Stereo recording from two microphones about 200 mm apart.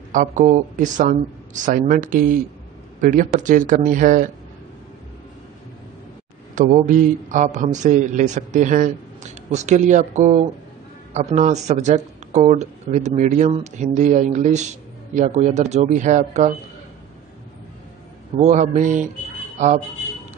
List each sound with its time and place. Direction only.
0.1 s speech: 40° right (ahead or behind)
6.5 s speech: 40° right (ahead or behind)
18.4 s speech: 35° right (ahead or behind)